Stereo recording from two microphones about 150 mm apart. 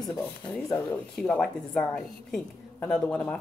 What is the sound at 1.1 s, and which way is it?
A woman's voice, 5° left (ahead or behind).